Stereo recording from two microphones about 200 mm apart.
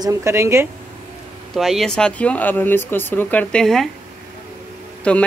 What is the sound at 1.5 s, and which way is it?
Speech, centre (ahead or behind).